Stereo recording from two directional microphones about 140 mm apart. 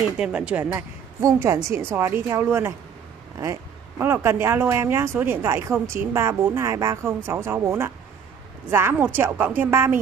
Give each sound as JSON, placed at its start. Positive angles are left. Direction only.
{"t": 0.2, "sound": "a woman's voice", "side_deg": -10}
{"t": 4.0, "sound": "a woman's voice", "side_deg": -15}